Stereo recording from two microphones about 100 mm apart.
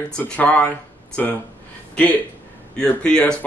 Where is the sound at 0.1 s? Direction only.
15° left (ahead or behind).